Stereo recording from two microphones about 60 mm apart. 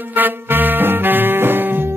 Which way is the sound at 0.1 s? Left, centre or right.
Right.